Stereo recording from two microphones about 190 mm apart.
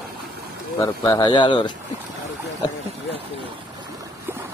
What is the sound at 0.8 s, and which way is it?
Speech, 20° left (ahead or behind).